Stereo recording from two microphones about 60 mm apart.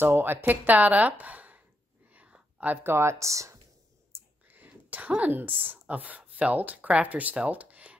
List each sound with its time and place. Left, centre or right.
0.0 s speech: right
2.1 s whispering: right
2.7 s speech: right
4.1 s speech: right